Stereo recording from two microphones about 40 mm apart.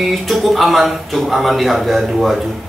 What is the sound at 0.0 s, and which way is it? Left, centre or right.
A man's voice, centre.